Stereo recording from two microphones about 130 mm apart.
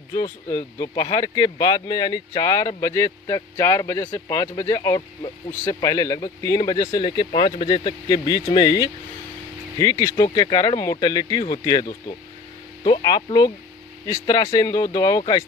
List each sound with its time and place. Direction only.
0.1 s speech: 30° left (ahead or behind)